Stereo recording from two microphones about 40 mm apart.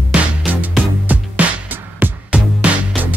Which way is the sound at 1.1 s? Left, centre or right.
Right.